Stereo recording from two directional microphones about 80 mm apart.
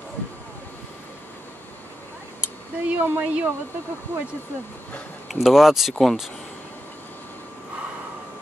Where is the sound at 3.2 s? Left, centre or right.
Centre.